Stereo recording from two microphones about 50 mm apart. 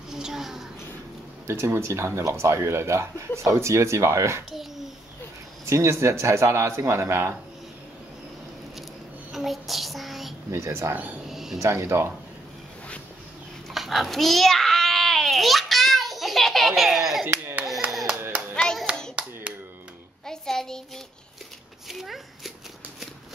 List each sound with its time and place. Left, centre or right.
0.1 s a sound: centre
1.5 s speech: right
4.5 s a child's voice: centre
5.7 s speech: right
9.3 s child singing: centre
10.5 s speech: right
11.2 s a sound: centre
11.6 s speech: right
13.7 s babbling: centre
17.8 s clapping: right
18.5 s clapping: centre
20.2 s child singing: centre
21.8 s a sound: centre